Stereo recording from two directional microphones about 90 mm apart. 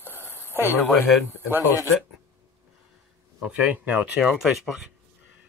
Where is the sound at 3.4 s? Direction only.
15° right (ahead or behind).